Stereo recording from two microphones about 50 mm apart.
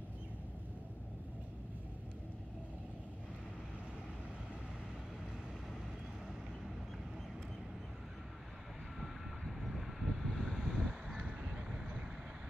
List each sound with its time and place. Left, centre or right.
9.6 s vehicle: centre; by 12.0 s right